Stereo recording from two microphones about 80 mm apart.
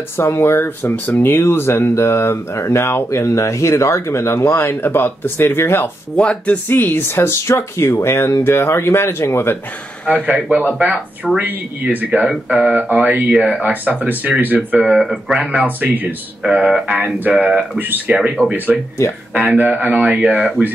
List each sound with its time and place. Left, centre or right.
0.2 s speech: left
6.1 s speech: centre
10.1 s speech: centre
14.8 s speech: centre
15.4 s speech: centre
16.4 s speech: centre
17.7 s speech: right
18.4 s speech: centre
19.3 s speech: centre